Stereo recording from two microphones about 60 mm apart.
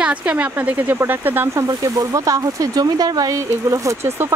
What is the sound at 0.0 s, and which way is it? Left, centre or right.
Speech, right.